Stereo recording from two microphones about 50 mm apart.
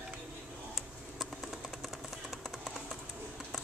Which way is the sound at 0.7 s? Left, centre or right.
Centre.